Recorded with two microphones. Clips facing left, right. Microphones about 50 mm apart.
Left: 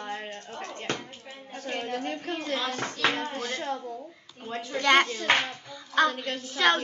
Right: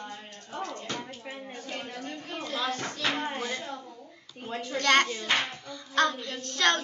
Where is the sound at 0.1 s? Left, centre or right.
Left.